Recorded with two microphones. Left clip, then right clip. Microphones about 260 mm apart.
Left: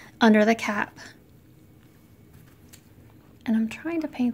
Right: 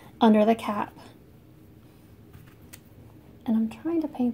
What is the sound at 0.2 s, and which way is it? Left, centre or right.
Speech, left.